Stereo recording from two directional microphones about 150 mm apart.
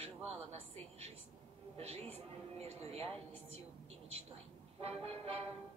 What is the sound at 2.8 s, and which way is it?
Speech, 45° right (ahead or behind).